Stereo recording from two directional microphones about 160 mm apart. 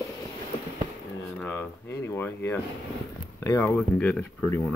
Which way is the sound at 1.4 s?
10° left (ahead or behind).